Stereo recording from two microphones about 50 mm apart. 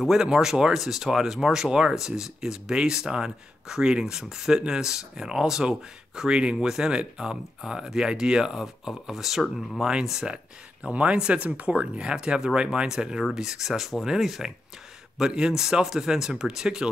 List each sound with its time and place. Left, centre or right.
0.0 s speech: centre
9.4 s speech: centre
10.0 s speech: centre